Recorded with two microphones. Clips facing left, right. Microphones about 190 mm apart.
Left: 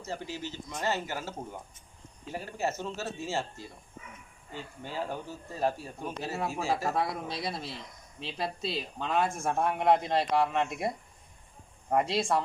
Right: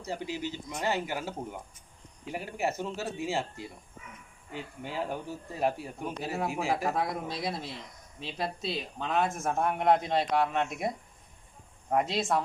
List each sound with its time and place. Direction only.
0.0 s speech: 15° right (ahead or behind)
7.0 s speech: centre (ahead or behind)
11.9 s speech: centre (ahead or behind)